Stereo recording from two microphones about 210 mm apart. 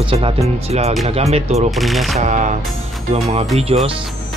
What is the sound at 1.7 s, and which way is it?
Speech, centre (ahead or behind).